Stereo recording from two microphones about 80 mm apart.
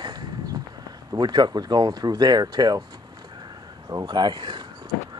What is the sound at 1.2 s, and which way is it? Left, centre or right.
Speech, right.